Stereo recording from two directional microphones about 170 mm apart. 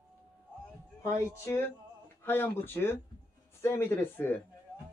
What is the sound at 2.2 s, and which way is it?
Speech, 10° left (ahead or behind).